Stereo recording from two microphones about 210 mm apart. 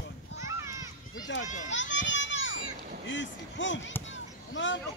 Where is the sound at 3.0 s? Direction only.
60° left (ahead or behind).